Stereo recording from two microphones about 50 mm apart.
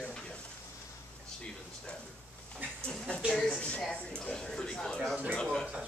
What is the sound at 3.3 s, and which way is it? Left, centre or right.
A man's voice, centre.